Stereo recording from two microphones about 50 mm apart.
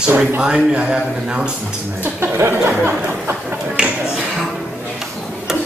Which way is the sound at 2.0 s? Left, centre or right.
Right.